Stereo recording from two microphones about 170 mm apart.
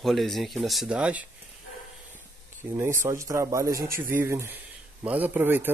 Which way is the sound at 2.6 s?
15° right (ahead or behind).